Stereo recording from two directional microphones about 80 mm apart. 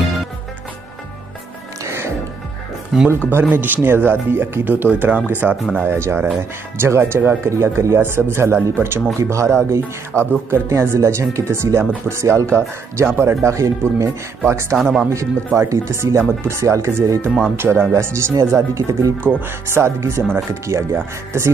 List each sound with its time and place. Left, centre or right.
1.9 s music: right
2.9 s speech: centre
3.3 s speech: right
5.9 s speech: right
14.8 s speech: centre
15.0 s speech: right